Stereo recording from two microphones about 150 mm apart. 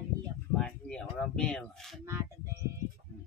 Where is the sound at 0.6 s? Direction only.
5° left (ahead or behind).